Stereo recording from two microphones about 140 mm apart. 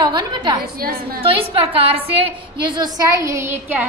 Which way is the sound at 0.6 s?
90° right.